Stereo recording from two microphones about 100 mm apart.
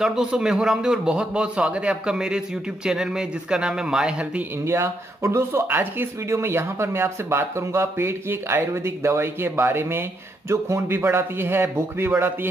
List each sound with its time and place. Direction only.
0.0 s a man's voice: 5° right (ahead or behind)
4.6 s speech: 30° right (ahead or behind)